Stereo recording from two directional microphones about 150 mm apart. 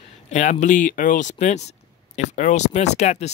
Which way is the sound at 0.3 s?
50° left (ahead or behind).